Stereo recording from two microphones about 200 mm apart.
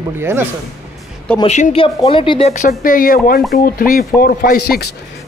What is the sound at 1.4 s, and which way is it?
Speech, 35° left (ahead or behind).